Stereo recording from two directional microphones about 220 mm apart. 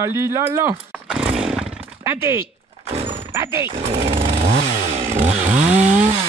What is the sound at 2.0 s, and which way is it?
Speech, 10° right (ahead or behind).